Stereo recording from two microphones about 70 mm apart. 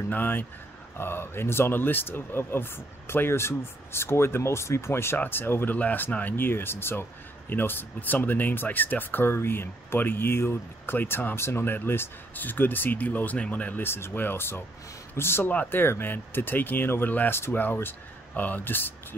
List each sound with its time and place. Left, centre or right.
0.1 s speech: left